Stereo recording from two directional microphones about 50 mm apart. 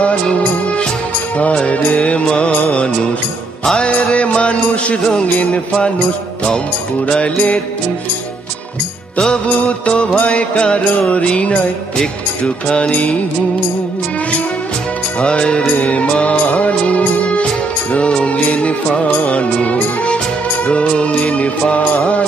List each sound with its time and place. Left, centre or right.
0.0 s music: left
7.1 s music: centre
9.3 s music: left
15.1 s music: left